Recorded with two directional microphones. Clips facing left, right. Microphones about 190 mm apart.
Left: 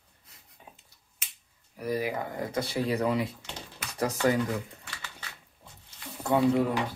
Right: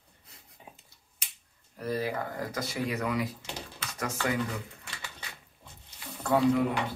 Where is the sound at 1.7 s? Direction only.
15° left (ahead or behind).